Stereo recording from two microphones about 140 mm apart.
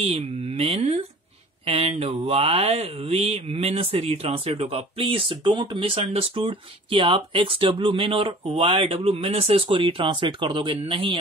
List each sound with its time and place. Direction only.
0.0 s speech: 45° right (ahead or behind)